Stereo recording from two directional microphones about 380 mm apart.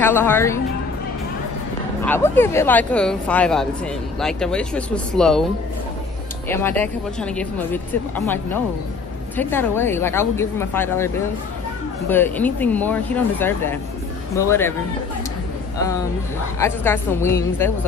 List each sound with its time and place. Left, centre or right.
0.0 s speech: centre
2.0 s speech: centre
6.5 s speech: centre
9.4 s speech: centre
12.1 s a woman's voice: centre
16.5 s a woman's voice: centre